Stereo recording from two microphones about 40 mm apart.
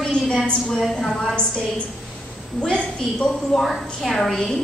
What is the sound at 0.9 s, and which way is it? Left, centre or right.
Speech, centre.